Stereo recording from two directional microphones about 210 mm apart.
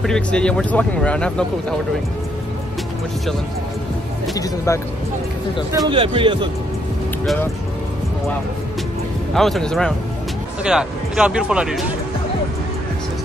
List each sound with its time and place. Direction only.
0.0 s speech: 5° left (ahead or behind)
4.7 s speech: 15° left (ahead or behind)
5.9 s a man's voice: 25° right (ahead or behind)
9.3 s speech: centre (ahead or behind)